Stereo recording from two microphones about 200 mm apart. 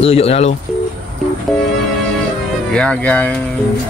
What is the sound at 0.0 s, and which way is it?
Speech, 30° left (ahead or behind).